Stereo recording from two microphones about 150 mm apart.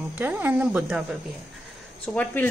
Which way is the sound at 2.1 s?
5° left (ahead or behind).